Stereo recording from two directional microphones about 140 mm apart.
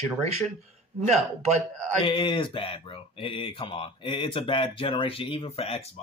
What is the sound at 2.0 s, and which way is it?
Speech, 35° left (ahead or behind).